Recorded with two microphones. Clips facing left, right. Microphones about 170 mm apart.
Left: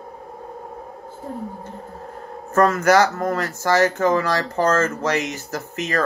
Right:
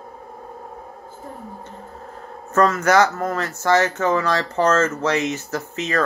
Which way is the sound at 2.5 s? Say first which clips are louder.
Left 1 dB; 35° left (ahead or behind).